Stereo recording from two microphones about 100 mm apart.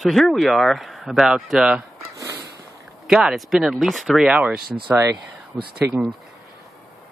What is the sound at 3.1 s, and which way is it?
Speech, 5° right (ahead or behind).